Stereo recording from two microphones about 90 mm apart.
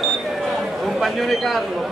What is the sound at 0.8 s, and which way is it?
Speech, centre (ahead or behind).